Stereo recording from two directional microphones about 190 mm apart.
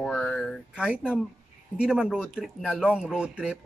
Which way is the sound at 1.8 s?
5° right (ahead or behind).